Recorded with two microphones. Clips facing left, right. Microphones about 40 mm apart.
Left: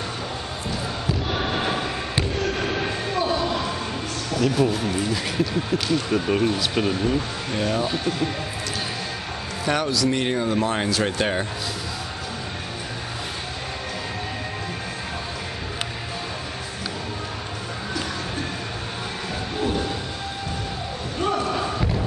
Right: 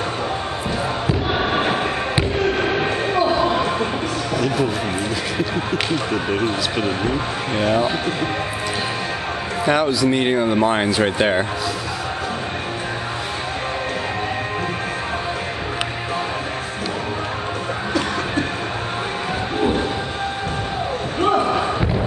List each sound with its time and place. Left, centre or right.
1.0 s fireworks: right
4.3 s a sound: centre
5.5 s speech: right
9.7 s speech: centre
19.6 s train: right
21.2 s basketball bounce: right